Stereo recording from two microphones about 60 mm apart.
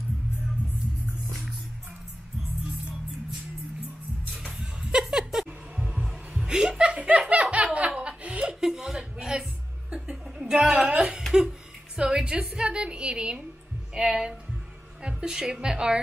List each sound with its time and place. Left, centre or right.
4.3 s music: centre
5.9 s music: right
6.5 s chuckle: centre
6.9 s laughter: right
7.5 s chuckle: right
12.0 s a woman's voice: centre